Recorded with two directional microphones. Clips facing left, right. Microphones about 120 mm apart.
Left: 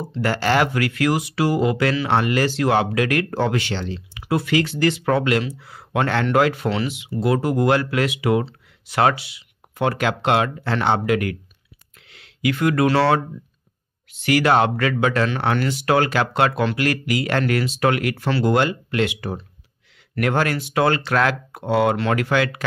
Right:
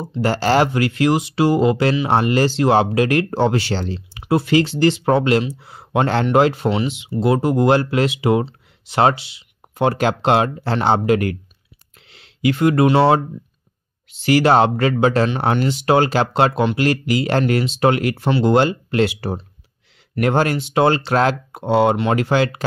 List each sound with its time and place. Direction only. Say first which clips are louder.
0.0 s speech: right 3 dB; 25° right (ahead or behind)